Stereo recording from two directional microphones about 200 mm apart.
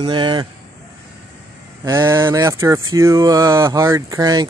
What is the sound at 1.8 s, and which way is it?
Speech, 15° right (ahead or behind).